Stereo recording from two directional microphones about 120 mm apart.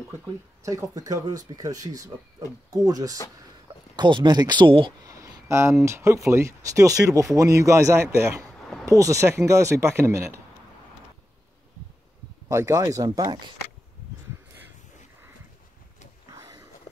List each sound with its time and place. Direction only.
0.7 s speech: 30° right (ahead or behind); by 4.9 s 45° right (ahead or behind)
5.0 s speech: 30° right (ahead or behind)
12.4 s speech: 25° right (ahead or behind)
16.3 s a sound: 30° right (ahead or behind)